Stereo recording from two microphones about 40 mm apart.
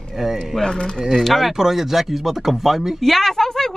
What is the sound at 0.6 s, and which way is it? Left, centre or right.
Speech, centre.